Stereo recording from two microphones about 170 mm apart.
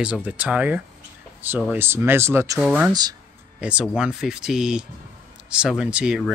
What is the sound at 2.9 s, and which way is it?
Speech, 25° right (ahead or behind).